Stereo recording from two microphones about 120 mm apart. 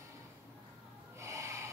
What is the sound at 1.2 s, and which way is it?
Snort, 25° right (ahead or behind).